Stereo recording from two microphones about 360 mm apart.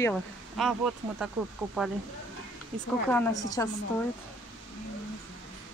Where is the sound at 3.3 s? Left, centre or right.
Centre.